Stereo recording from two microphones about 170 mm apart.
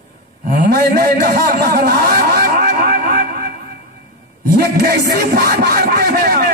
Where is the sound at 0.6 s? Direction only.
60° right (ahead or behind).